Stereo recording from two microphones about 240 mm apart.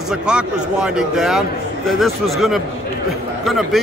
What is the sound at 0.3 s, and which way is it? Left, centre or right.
A man's voice, centre.